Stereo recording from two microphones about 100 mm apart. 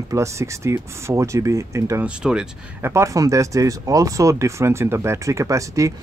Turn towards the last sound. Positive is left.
turn(degrees=-30)  # may be behind; listen again after turning